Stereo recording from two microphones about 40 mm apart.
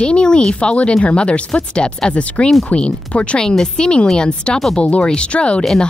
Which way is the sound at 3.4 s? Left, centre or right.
Centre.